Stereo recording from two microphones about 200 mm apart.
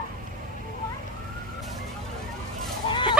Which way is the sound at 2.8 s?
25° left (ahead or behind).